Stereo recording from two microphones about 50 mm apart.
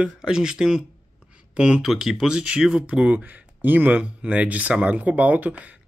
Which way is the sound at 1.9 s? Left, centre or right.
Centre.